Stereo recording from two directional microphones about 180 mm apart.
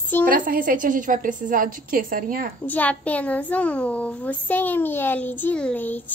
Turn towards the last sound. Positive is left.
turn(degrees=10)  # may be behind; listen again after turning